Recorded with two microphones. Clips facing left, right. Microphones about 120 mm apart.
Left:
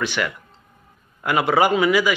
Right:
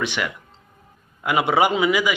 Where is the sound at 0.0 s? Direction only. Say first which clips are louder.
Left 1 dB; 20° right (ahead or behind).